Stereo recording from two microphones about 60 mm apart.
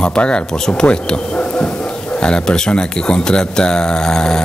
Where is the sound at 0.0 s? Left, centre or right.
Centre.